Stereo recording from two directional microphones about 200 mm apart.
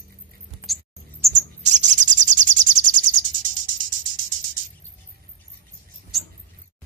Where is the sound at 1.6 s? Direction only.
35° right (ahead or behind).